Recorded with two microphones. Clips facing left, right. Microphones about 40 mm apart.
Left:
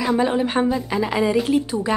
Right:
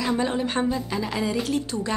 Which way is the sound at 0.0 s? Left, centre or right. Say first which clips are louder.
Left 5 dB; centre.